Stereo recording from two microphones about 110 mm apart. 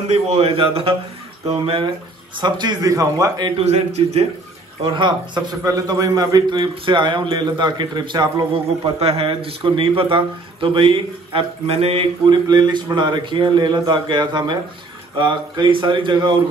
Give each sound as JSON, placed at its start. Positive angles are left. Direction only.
{"t": 0.1, "sound": "speech", "side_deg": -65}
{"t": 2.4, "sound": "a man's voice", "side_deg": -40}
{"t": 3.5, "sound": "speech", "side_deg": -75}
{"t": 4.8, "sound": "a man's voice", "side_deg": -45}
{"t": 6.7, "sound": "a man's voice", "side_deg": -50}
{"t": 8.6, "sound": "speech", "side_deg": -65}
{"t": 12.3, "sound": "a man's voice", "side_deg": -40}